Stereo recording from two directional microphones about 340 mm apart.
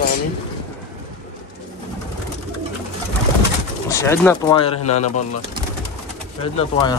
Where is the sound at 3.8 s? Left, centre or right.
Centre.